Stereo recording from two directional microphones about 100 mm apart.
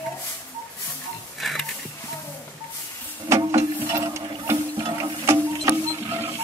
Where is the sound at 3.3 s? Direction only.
30° right (ahead or behind).